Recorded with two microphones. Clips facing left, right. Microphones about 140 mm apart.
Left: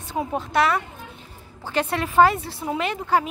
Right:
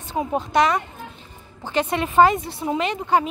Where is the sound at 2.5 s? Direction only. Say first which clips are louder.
Right 2 dB; centre (ahead or behind).